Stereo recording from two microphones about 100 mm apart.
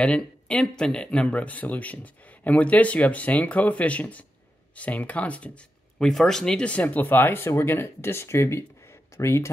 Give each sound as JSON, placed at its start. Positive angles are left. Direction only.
{"t": 0.0, "sound": "speech", "side_deg": 10}